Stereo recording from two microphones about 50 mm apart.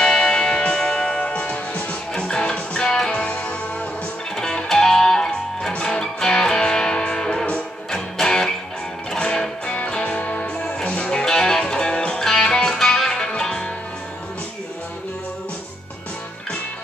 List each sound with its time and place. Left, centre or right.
0.0 s music: centre
4.4 s music: centre
11.2 s music: centre